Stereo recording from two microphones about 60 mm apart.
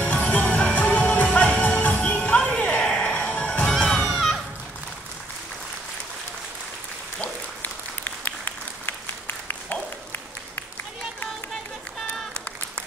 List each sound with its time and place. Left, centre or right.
0.0 s music: left; by 4.4 s centre
7.2 s applause: left
9.5 s a sound: left